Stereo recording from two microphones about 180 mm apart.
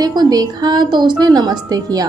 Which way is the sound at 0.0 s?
20° right (ahead or behind).